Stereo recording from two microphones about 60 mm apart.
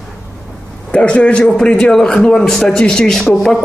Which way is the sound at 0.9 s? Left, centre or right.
Centre.